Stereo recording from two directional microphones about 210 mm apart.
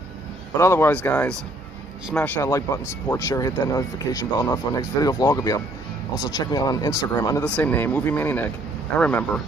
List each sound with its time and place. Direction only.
0.6 s speech: 10° left (ahead or behind)
7.4 s a man's voice: 5° left (ahead or behind)